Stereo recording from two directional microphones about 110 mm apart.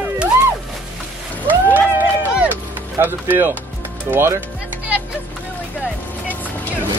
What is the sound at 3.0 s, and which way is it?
Speech, 15° right (ahead or behind).